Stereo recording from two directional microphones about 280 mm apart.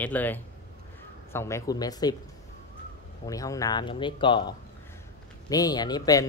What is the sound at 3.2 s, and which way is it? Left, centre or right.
Speech, centre.